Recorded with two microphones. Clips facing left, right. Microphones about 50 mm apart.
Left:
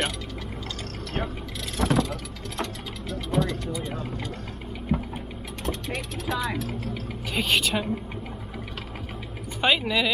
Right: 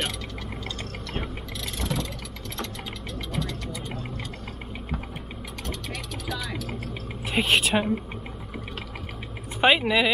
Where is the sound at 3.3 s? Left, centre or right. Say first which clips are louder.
Left 7 dB; centre.